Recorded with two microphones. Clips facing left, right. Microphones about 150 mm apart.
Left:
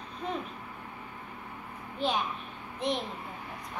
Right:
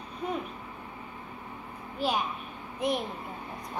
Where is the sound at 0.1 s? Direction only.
10° right (ahead or behind).